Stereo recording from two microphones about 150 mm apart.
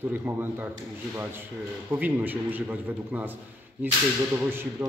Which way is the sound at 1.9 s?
10° right (ahead or behind).